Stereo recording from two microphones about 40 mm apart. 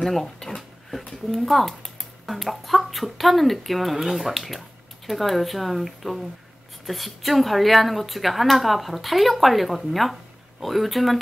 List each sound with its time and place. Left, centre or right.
0.0 s speech: centre